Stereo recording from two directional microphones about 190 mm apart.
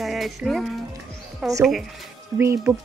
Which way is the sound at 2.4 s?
15° right (ahead or behind).